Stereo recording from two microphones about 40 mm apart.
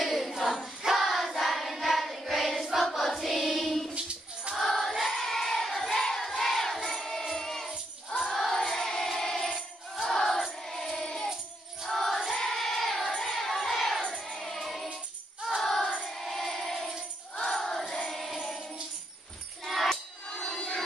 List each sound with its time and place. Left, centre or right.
0.0 s a sound: centre
0.8 s child singing: centre
3.9 s a sound: right
4.6 s choir: centre
7.1 s music: centre
11.9 s music: centre
12.3 s choir: centre
14.4 s music: centre
17.4 s music: centre
19.6 s music: centre
20.2 s a sound: left
20.5 s a sound: centre